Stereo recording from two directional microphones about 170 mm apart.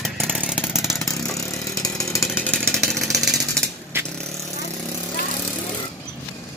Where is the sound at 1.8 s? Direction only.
20° left (ahead or behind).